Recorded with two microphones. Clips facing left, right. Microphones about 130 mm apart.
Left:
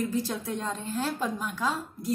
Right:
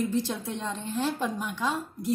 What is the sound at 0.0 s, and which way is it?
Speech, centre (ahead or behind).